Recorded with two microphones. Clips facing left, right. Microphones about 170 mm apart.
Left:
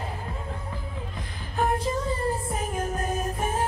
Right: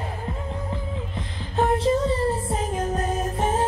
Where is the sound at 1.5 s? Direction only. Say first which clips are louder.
Right 5 dB; 25° right (ahead or behind).